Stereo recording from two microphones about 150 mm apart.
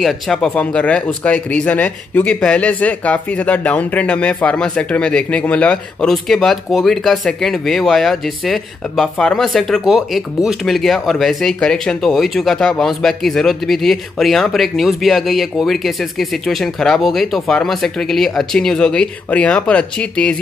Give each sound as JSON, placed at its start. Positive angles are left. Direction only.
{"t": 0.0, "sound": "speech", "side_deg": 5}